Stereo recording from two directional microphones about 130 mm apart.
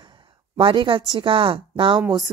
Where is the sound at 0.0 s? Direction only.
40° right (ahead or behind).